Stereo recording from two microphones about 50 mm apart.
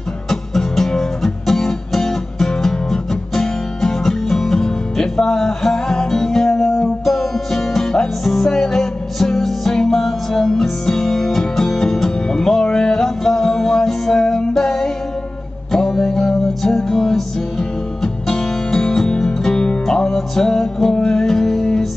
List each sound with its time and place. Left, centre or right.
0.3 s music: centre